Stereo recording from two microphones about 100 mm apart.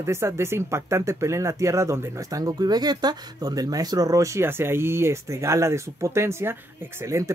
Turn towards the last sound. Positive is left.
turn(degrees=-30)  # may be behind; listen again after turning